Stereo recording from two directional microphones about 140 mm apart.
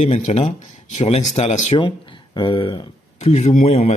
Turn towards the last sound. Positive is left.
turn(degrees=55)  # may be behind; listen again after turning